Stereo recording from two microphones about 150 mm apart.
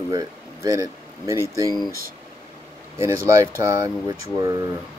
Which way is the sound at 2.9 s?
20° right (ahead or behind).